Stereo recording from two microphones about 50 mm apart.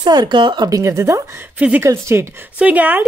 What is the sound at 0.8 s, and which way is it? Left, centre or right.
Speech, right.